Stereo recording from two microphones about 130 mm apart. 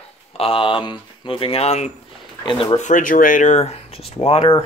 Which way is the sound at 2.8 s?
85° left.